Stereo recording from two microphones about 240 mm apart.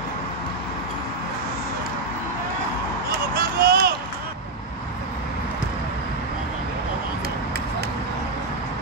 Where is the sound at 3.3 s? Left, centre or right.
Right.